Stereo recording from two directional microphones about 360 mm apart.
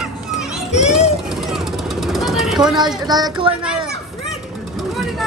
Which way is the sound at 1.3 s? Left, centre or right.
Centre.